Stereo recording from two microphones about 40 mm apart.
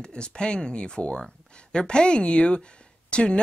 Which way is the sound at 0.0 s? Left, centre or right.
Left.